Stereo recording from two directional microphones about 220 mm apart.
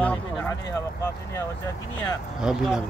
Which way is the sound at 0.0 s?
5° left (ahead or behind).